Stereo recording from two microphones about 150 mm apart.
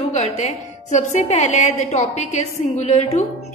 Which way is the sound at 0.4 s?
50° left (ahead or behind).